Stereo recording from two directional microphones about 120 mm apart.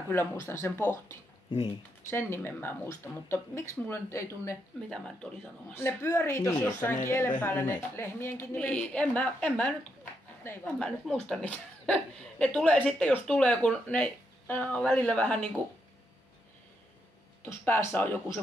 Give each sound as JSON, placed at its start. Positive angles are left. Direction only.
{"t": 0.1, "sound": "a woman's voice", "side_deg": 20}
{"t": 1.5, "sound": "speech", "side_deg": 50}
{"t": 2.0, "sound": "a woman's voice", "side_deg": 20}
{"t": 4.8, "sound": "speech", "side_deg": 5}
{"t": 5.7, "sound": "a woman's voice", "side_deg": 20}
{"t": 8.6, "sound": "a woman's voice", "side_deg": 10}
{"t": 10.8, "sound": "speech", "side_deg": 5}
{"t": 17.5, "sound": "speech", "side_deg": 20}